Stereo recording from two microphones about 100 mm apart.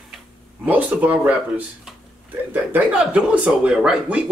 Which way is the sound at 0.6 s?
15° right (ahead or behind).